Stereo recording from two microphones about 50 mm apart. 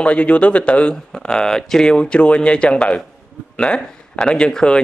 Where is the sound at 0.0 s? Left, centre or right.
Left.